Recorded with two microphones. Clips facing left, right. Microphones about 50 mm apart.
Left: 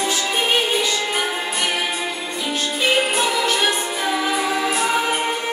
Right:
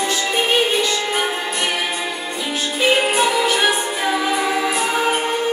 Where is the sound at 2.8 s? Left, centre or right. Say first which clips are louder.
Right 3 dB; centre.